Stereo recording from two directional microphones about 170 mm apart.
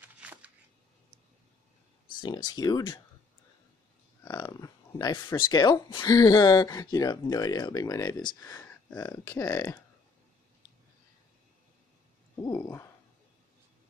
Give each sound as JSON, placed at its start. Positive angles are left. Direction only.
{"t": 0.0, "sound": "shuffling cards", "side_deg": -10}
{"t": 2.1, "sound": "speech", "side_deg": 25}
{"t": 4.2, "sound": "speech", "side_deg": 20}
{"t": 12.4, "sound": "a sound", "side_deg": 15}